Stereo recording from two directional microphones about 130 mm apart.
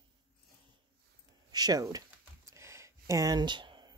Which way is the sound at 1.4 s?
30° right (ahead or behind).